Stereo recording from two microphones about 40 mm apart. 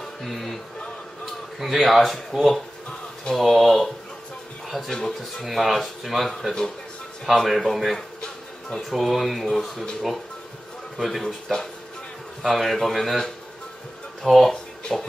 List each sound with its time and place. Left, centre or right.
0.0 s music: centre
1.6 s speech: centre
7.2 s speech: centre
8.2 s music: left
8.9 s speech: centre
11.1 s speech: centre
14.2 s speech: centre
14.5 s a sound: centre